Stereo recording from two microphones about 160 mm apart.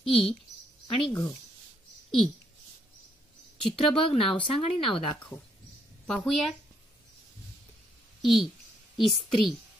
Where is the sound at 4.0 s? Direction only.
35° left (ahead or behind).